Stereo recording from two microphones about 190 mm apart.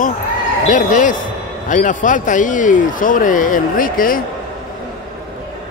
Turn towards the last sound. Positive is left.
turn(degrees=45)  # may be behind; listen again after turning